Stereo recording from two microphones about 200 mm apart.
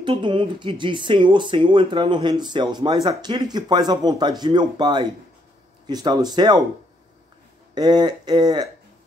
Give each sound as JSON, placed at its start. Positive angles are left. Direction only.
{"t": 0.0, "sound": "speech", "side_deg": -25}
{"t": 7.7, "sound": "speech", "side_deg": -20}